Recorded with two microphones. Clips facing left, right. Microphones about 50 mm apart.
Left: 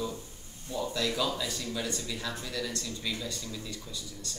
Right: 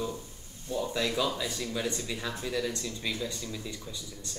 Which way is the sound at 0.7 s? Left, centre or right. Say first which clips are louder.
Right 1 dB; centre.